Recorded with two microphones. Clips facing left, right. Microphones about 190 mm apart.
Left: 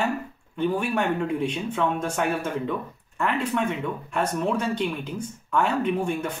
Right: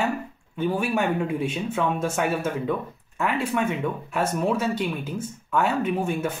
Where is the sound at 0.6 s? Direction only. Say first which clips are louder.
Even; 5° right (ahead or behind).